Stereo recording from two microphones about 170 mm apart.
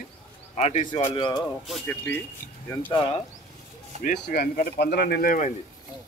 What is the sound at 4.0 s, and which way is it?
Speech, 55° left (ahead or behind).